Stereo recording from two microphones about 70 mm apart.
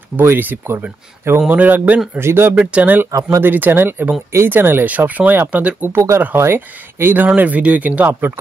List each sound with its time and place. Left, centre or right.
0.2 s speech: right
1.5 s speech: right
2.5 s speech: centre
3.1 s speech: right
3.3 s speech: right
5.9 s speech: right